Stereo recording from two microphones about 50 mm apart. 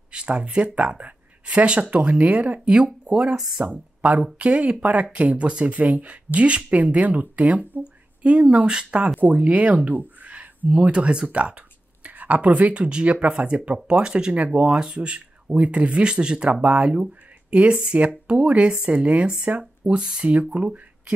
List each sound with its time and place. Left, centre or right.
0.1 s speech: right
3.1 s speech: centre
3.6 s speech: right
7.8 s a sound: right
8.6 s speech: centre
9.2 s speech: right